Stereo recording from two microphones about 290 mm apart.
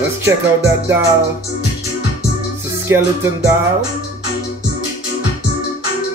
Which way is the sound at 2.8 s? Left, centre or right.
Centre.